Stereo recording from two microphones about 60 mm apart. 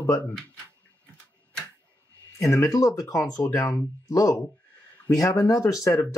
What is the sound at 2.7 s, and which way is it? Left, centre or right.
Speech, left.